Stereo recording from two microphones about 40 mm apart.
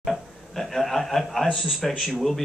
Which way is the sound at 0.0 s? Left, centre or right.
Centre.